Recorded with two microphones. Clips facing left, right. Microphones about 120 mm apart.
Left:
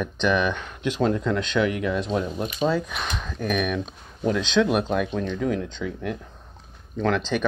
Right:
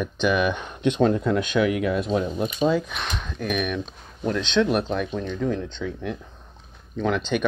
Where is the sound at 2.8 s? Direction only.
Centre (ahead or behind).